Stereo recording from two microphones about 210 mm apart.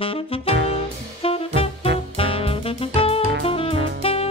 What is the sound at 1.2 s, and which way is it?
Music, 25° left (ahead or behind).